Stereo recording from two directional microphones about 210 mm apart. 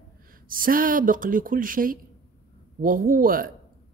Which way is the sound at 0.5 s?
40° right (ahead or behind).